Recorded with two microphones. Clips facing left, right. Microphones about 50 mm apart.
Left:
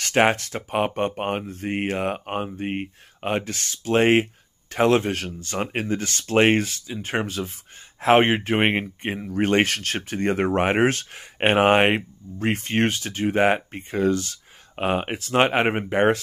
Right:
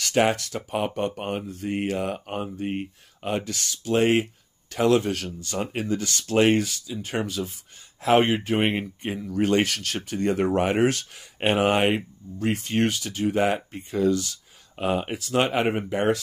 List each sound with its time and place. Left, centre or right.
0.0 s speech: left